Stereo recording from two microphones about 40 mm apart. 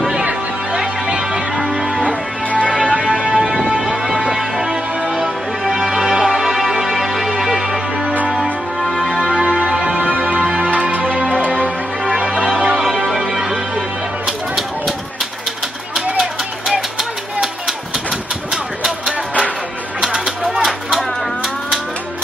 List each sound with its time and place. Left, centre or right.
0.7 s music: right
2.7 s music: right
8.8 s music: centre
9.2 s music: right
13.3 s music: centre
15.9 s a sound: centre
18.5 s music: centre
20.5 s a sound: centre